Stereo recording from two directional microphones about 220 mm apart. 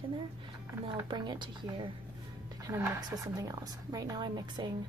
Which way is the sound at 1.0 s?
20° right (ahead or behind).